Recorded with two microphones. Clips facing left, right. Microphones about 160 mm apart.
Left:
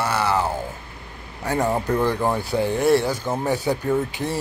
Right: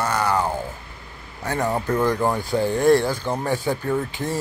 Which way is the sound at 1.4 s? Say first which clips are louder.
Left 2 dB; 20° left (ahead or behind).